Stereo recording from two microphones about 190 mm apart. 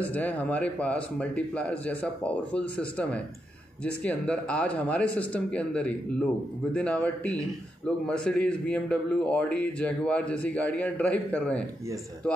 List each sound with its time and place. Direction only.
0.0 s a man's voice: 10° left (ahead or behind)